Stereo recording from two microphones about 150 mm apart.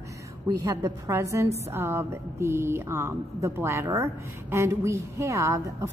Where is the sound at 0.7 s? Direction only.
20° right (ahead or behind).